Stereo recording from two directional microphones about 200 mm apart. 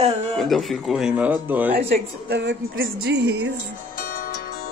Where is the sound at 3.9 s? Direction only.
45° left (ahead or behind).